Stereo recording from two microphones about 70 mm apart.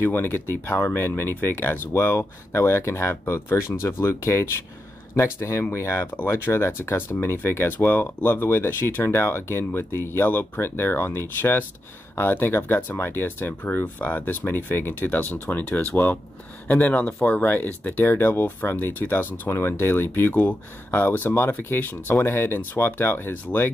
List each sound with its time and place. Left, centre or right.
0.0 s speech: left